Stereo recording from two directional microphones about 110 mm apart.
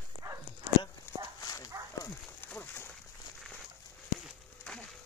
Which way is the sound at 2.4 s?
15° left (ahead or behind).